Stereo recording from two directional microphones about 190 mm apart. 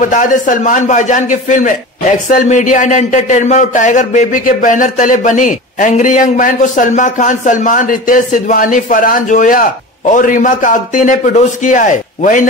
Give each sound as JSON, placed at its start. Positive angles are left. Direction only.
{"t": 0.0, "sound": "a man's voice", "side_deg": 45}